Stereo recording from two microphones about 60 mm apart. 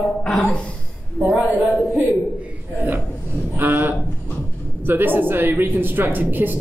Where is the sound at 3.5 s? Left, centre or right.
Right.